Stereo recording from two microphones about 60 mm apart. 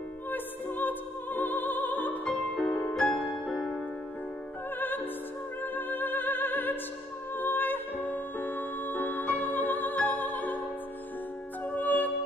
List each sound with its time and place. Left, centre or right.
0.3 s music: left
2.2 s music: centre
4.7 s music: left
11.6 s music: left